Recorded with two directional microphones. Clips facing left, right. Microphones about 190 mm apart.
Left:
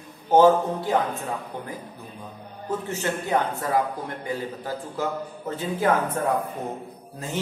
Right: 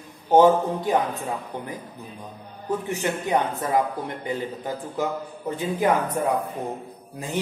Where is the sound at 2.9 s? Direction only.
15° right (ahead or behind).